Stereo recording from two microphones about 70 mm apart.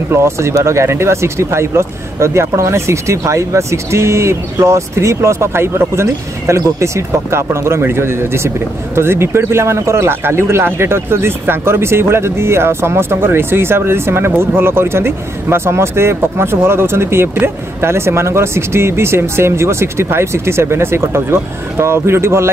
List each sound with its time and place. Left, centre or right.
0.1 s speech: right